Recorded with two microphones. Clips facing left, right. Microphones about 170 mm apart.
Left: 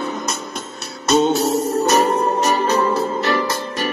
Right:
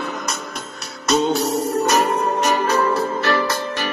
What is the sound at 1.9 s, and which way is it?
Music, 30° left (ahead or behind).